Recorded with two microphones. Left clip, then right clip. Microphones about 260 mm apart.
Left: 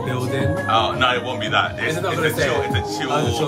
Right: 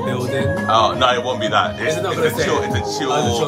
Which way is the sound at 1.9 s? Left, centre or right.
Centre.